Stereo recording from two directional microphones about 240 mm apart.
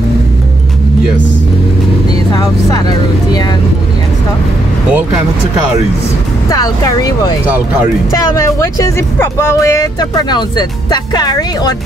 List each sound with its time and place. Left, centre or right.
2.3 s speech: centre
6.5 s speech: centre
7.4 s speech: centre
8.1 s speech: centre